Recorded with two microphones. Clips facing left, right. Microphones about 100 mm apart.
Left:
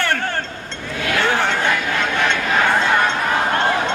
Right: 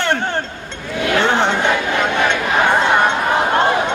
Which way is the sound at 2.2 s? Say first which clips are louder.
Even; 15° right (ahead or behind).